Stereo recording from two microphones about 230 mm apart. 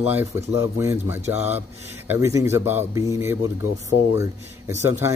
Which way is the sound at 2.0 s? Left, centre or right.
Centre.